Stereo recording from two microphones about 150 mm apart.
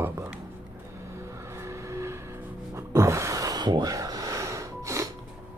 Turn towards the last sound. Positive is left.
turn(degrees=-20)  # may be behind; listen again after turning